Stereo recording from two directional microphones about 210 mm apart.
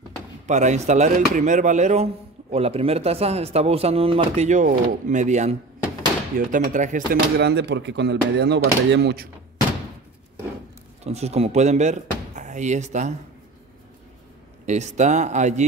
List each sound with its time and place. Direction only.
0.5 s speech: 35° right (ahead or behind)
7.1 s speech: 50° right (ahead or behind)
11.1 s speech: 30° right (ahead or behind)
14.7 s speech: 35° right (ahead or behind)